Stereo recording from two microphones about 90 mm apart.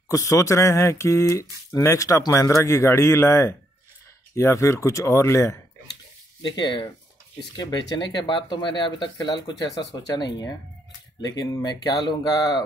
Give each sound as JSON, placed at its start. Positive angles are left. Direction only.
{"t": 0.1, "sound": "speech", "side_deg": 35}
{"t": 6.5, "sound": "speech", "side_deg": 55}